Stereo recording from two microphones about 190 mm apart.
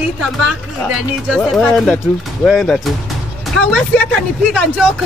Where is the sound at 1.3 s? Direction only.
Centre (ahead or behind).